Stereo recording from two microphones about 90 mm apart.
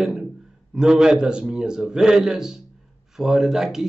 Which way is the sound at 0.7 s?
10° right (ahead or behind).